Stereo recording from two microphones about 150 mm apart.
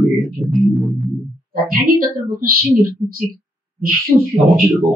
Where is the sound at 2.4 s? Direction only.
80° right.